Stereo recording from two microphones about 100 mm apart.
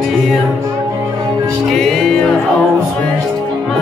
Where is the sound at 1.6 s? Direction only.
Centre (ahead or behind).